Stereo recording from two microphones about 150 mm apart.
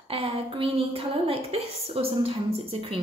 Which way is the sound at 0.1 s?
35° right (ahead or behind).